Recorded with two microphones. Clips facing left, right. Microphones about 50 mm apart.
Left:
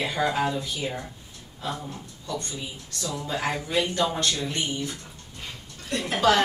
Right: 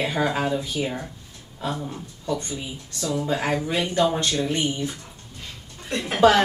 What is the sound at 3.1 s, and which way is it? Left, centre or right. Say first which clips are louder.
Speech: right 4 dB; centre.